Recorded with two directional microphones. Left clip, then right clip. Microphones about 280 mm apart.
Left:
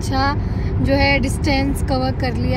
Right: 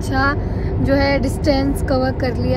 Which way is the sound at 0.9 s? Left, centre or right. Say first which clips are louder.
Left 1 dB; centre.